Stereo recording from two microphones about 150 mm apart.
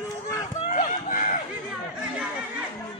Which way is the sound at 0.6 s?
60° left (ahead or behind).